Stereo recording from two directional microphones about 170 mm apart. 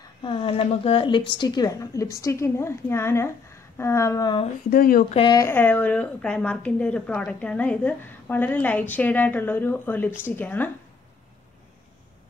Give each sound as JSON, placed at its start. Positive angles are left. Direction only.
{"t": 0.2, "sound": "a woman's voice", "side_deg": 30}
{"t": 4.6, "sound": "speech", "side_deg": 60}
{"t": 5.1, "sound": "a woman's voice", "side_deg": 30}
{"t": 5.4, "sound": "a woman's voice", "side_deg": 10}